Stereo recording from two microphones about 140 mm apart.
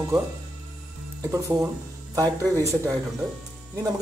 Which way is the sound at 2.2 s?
25° right (ahead or behind).